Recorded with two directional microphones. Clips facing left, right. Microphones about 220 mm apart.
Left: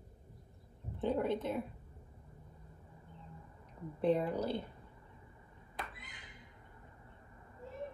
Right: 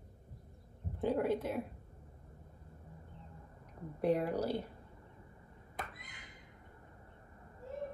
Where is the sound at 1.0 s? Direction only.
10° right (ahead or behind).